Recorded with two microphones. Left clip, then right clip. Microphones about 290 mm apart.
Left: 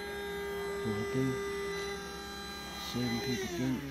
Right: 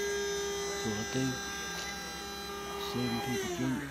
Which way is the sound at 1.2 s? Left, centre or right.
Centre.